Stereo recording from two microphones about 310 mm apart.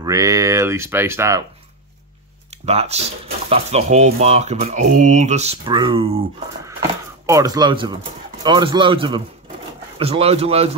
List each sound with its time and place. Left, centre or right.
0.0 s speech: centre
2.5 s speech: centre
7.2 s speech: centre